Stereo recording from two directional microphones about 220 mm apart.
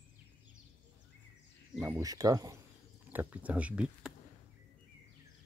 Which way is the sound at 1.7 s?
10° right (ahead or behind).